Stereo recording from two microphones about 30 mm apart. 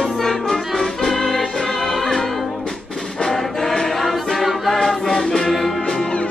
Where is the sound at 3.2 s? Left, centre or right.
Centre.